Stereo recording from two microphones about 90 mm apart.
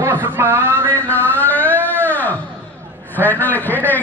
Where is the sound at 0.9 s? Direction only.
20° left (ahead or behind).